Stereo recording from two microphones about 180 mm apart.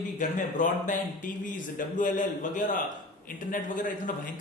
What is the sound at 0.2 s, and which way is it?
A man's voice, 45° left (ahead or behind).